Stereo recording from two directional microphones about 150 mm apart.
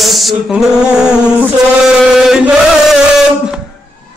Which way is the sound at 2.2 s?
5° right (ahead or behind).